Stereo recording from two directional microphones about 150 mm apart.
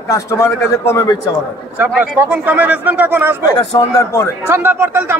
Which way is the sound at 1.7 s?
10° right (ahead or behind).